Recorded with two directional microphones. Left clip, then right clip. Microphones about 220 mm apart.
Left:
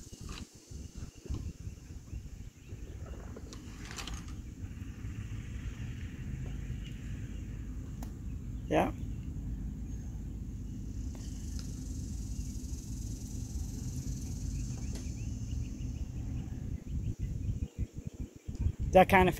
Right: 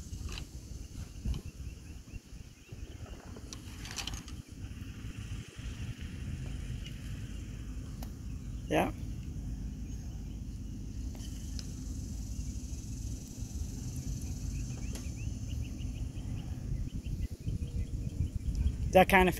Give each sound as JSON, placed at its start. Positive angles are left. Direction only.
{"t": 3.8, "sound": "pulleys", "side_deg": -50}
{"t": 8.6, "sound": "a sound", "side_deg": 0}
{"t": 18.9, "sound": "speech", "side_deg": 0}